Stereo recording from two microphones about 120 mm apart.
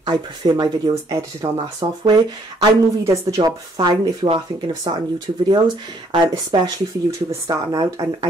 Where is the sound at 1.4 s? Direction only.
55° right (ahead or behind).